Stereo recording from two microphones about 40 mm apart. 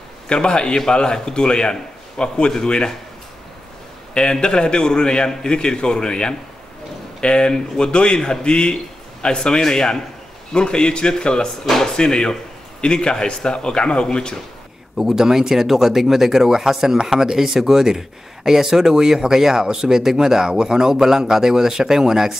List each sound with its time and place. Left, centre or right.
0.3 s a man's voice: left
4.1 s a man's voice: left
15.0 s speech: centre